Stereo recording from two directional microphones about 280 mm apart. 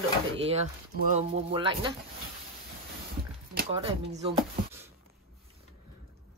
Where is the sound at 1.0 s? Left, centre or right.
Right.